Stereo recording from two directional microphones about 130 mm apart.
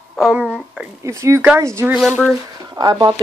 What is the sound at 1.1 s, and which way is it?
A woman's voice, 25° right (ahead or behind).